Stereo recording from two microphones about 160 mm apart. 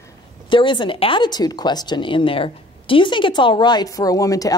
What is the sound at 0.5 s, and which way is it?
A woman's voice, 30° left (ahead or behind).